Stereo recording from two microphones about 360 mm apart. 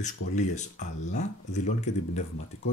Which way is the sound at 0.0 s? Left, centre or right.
Centre.